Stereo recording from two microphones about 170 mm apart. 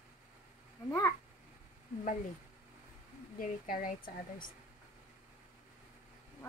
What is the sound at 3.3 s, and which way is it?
Speech, 55° left (ahead or behind).